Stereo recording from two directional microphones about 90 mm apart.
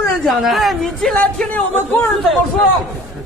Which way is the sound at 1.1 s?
15° left (ahead or behind).